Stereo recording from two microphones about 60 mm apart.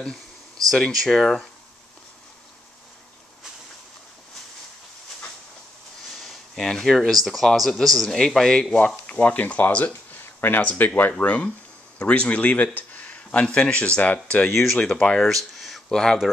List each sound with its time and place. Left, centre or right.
0.7 s speech: centre
6.1 s a sound: centre
7.2 s a man's voice: centre
8.7 s speech: left
15.5 s a sound: centre
15.9 s speech: centre